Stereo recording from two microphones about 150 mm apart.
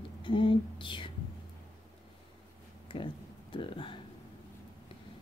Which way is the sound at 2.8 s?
35° left (ahead or behind).